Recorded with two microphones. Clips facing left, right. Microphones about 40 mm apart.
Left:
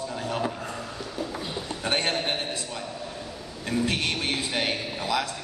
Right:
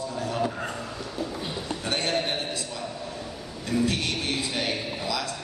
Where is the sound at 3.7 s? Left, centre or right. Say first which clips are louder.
Even; left.